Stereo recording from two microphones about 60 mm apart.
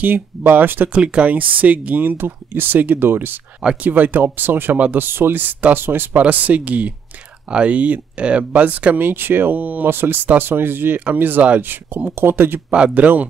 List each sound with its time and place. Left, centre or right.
0.0 s speech: right
0.9 s speech: centre
9.8 s speech: right
12.7 s speech: right